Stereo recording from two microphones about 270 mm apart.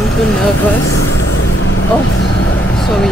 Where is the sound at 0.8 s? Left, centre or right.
Left.